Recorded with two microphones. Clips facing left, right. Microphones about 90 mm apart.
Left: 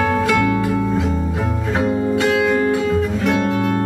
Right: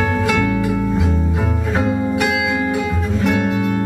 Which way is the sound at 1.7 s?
15° right (ahead or behind).